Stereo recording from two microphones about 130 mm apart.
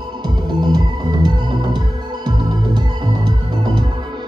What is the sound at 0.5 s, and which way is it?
Music, 35° right (ahead or behind).